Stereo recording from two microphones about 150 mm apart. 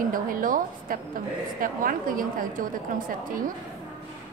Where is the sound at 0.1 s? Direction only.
65° right (ahead or behind).